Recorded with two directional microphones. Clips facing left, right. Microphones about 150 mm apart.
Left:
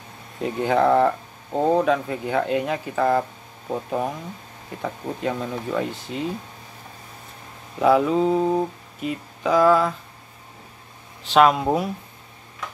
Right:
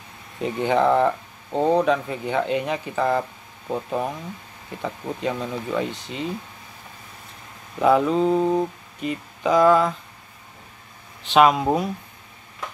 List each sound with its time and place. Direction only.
0.4 s speech: centre (ahead or behind)
7.8 s speech: centre (ahead or behind)
11.2 s speech: centre (ahead or behind)